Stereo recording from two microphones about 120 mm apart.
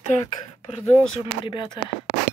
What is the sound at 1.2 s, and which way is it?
Speech, 45° left (ahead or behind).